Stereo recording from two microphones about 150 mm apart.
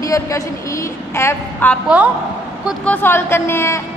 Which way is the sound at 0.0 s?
20° left (ahead or behind).